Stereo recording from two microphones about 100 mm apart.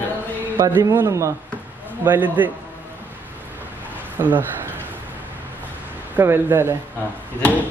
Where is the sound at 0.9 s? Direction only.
30° right (ahead or behind).